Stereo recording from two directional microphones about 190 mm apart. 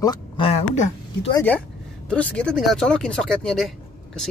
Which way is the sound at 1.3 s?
10° left (ahead or behind).